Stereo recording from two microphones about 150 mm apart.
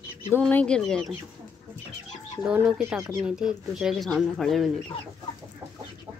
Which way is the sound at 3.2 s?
5° right (ahead or behind).